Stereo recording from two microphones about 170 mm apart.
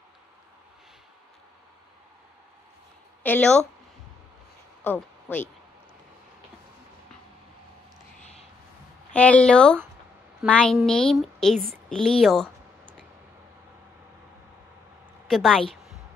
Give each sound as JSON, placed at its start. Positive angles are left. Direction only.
{"t": 3.3, "sound": "a woman's voice", "side_deg": 5}
{"t": 4.8, "sound": "speech", "side_deg": 10}
{"t": 8.2, "sound": "a sound", "side_deg": 40}
{"t": 9.1, "sound": "a woman's voice", "side_deg": 10}
{"t": 15.2, "sound": "a woman's voice", "side_deg": 0}